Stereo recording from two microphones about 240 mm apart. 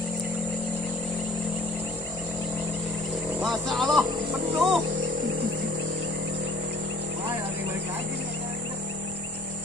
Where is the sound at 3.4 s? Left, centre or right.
Centre.